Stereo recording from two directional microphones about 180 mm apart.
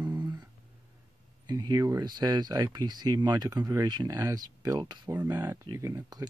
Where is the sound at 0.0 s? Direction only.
25° right (ahead or behind).